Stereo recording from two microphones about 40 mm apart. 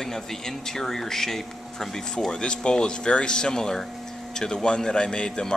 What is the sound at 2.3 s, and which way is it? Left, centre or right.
Speech, left.